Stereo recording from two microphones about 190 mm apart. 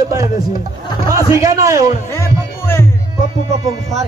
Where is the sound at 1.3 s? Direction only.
20° right (ahead or behind).